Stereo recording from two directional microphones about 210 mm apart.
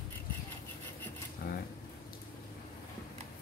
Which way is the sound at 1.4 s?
45° left (ahead or behind).